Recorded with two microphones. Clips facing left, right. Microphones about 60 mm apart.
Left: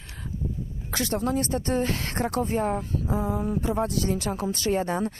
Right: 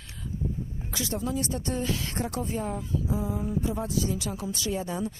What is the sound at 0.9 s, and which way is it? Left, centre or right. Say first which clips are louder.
Speech: left 5 dB; left.